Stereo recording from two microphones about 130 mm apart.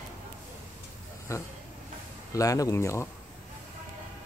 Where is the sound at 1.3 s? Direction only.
25° left (ahead or behind).